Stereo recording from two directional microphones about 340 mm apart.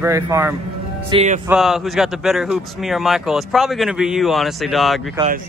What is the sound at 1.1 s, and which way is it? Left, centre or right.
Speech, centre.